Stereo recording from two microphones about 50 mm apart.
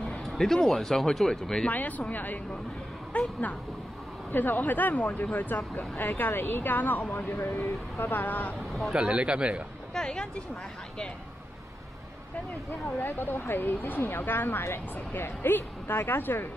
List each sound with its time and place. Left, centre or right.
0.2 s speech: centre
1.7 s speech: left
4.3 s speech: left
8.9 s speech: centre
9.9 s speech: centre
13.0 s speech: left
14.6 s speech: left